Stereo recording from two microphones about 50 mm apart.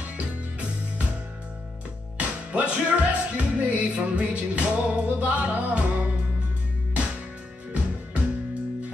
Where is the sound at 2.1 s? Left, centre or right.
Right.